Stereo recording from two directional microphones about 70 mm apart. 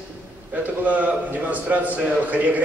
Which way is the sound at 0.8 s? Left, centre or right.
Right.